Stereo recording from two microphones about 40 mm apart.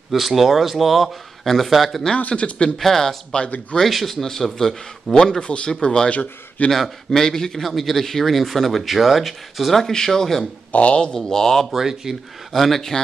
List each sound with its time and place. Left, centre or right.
0.1 s speech: centre
2.1 s a man's voice: left
2.8 s a man's voice: centre
5.4 s a man's voice: left
6.0 s a man's voice: left
6.7 s a man's voice: centre
7.6 s speech: centre
10.7 s speech: left
11.1 s a man's voice: centre
11.7 s speech: centre
12.5 s speech: centre